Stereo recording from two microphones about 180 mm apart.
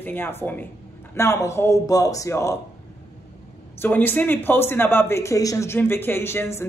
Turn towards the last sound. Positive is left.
turn(degrees=15)  # may be behind; listen again after turning